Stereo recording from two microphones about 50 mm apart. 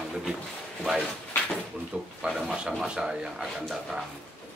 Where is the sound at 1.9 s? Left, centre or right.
Centre.